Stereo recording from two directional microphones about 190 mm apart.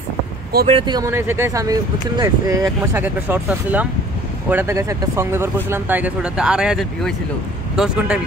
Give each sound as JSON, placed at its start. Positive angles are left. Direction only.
{"t": 0.7, "sound": "speech", "side_deg": -25}